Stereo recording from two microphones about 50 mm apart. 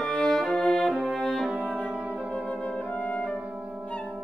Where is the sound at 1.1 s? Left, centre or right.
Centre.